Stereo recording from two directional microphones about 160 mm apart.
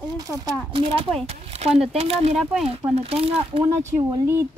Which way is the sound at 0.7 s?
35° right (ahead or behind).